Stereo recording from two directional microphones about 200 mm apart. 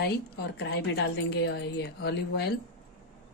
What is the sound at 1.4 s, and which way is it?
A woman's voice, 55° left (ahead or behind).